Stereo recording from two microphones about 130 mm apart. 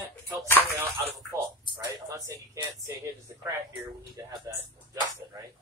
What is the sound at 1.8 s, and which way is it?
Speech, 25° right (ahead or behind).